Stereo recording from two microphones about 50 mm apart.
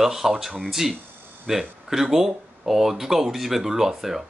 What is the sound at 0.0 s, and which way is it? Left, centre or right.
Speech, centre.